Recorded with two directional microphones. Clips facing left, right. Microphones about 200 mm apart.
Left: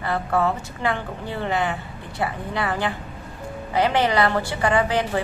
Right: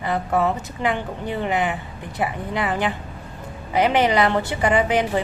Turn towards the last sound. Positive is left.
turn(degrees=-20)  # may be behind; listen again after turning